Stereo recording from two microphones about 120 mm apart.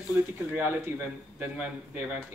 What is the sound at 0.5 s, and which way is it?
A man's voice, 15° right (ahead or behind).